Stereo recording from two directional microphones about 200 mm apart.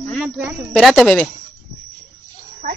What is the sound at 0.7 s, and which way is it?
Speech, centre (ahead or behind).